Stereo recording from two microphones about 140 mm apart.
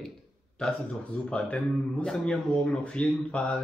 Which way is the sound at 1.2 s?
5° left (ahead or behind).